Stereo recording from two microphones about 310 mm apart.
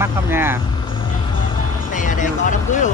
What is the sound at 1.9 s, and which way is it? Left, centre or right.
Speech, left.